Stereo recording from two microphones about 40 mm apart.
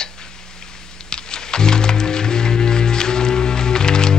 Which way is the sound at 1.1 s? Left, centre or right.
Centre.